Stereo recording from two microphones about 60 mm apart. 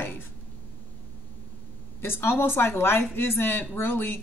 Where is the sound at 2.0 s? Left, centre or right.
Left.